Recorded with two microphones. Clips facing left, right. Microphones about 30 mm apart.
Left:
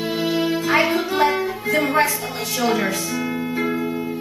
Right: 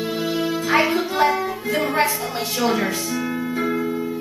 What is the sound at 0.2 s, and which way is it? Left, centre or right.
Music, left.